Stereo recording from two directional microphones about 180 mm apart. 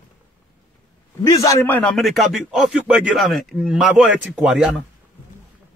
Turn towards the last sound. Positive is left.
turn(degrees=0)  # may be behind; listen again after turning